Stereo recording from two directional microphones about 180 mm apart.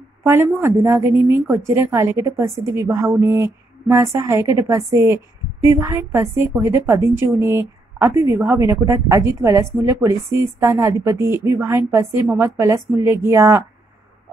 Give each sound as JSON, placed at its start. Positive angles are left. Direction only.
{"t": 0.2, "sound": "a woman's voice", "side_deg": -15}